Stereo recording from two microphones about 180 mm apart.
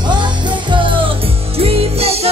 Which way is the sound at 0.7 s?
25° right (ahead or behind).